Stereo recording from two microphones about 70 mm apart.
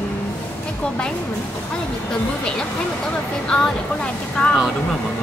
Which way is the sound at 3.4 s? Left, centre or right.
Centre.